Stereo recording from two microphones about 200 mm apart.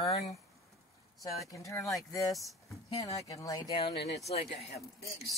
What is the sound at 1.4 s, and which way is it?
Speech, 15° left (ahead or behind).